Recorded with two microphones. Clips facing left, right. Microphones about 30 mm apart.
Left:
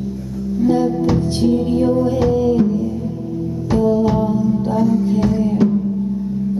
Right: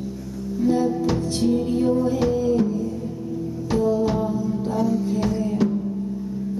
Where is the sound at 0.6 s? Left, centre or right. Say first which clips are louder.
Left 4 dB; left.